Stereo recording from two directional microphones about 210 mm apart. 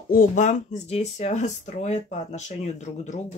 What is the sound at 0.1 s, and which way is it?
Speech, 35° left (ahead or behind).